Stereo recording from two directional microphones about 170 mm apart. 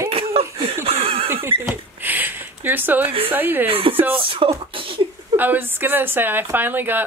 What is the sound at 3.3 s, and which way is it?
Speech, 10° right (ahead or behind).